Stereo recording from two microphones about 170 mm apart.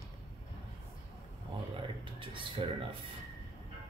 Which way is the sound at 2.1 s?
30° right (ahead or behind).